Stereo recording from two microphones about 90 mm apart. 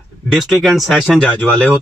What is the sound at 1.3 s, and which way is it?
Speech, 15° left (ahead or behind).